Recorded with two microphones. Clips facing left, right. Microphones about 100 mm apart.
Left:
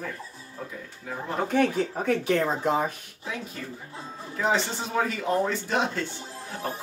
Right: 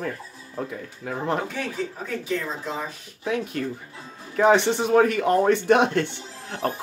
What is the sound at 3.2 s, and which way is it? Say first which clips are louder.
Speech: right 9 dB; 65° right (ahead or behind).